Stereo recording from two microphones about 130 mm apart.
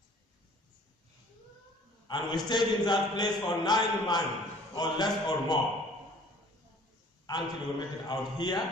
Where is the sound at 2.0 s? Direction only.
35° left (ahead or behind).